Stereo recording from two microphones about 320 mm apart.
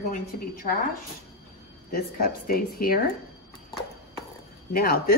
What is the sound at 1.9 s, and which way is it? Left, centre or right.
Speech, left.